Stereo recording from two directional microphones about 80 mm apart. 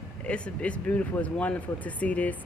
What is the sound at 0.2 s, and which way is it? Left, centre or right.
A woman's voice, centre.